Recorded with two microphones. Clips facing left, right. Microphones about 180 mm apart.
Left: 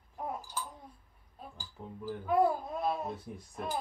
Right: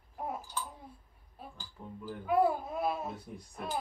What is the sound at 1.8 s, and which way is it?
Speech, 15° left (ahead or behind).